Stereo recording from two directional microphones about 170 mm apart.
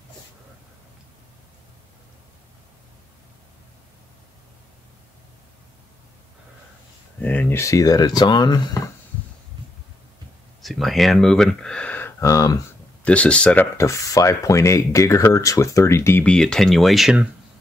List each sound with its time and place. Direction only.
7.2 s speech: 10° left (ahead or behind)
10.6 s speech: centre (ahead or behind); by 12.5 s 20° left (ahead or behind)
13.0 s speech: 5° left (ahead or behind)